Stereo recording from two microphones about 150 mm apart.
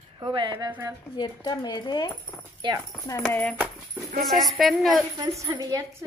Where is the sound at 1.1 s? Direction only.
30° left (ahead or behind).